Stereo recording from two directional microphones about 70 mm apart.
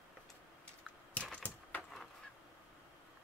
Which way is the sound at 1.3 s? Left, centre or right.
Centre.